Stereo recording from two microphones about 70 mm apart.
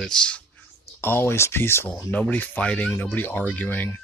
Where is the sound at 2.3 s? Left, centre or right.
Left.